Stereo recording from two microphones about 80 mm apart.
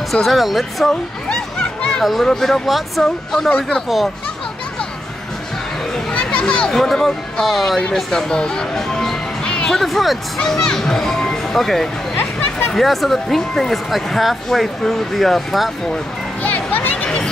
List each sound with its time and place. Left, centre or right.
0.1 s speech: centre
6.1 s speech: centre
12.2 s a sound: left
12.7 s speech: centre
16.4 s music: left